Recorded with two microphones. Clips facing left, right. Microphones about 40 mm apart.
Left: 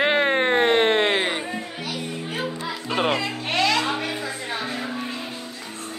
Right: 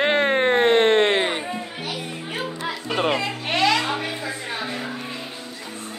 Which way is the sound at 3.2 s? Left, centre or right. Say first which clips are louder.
Right 1 dB; centre.